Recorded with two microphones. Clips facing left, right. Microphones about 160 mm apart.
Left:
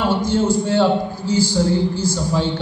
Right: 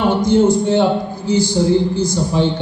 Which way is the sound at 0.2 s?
15° right (ahead or behind).